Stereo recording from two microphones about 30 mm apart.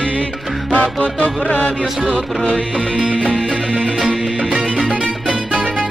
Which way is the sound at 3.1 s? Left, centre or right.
Left.